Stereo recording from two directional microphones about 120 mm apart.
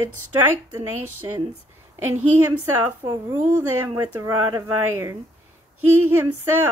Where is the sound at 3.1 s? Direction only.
20° right (ahead or behind).